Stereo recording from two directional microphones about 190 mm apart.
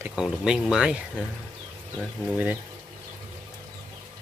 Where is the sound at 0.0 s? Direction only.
5° right (ahead or behind).